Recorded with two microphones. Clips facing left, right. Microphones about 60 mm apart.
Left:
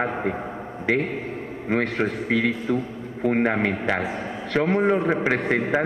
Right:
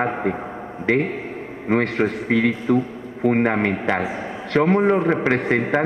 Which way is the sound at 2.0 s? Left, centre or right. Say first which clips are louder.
Right 4 dB; centre.